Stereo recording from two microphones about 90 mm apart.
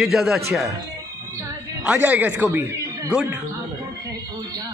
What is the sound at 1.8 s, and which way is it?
Speech, 15° right (ahead or behind).